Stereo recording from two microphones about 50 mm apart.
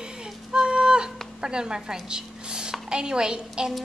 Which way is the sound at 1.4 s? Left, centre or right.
Centre.